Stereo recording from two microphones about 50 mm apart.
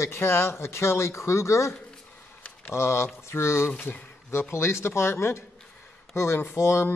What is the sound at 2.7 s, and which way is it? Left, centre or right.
A man's voice, left.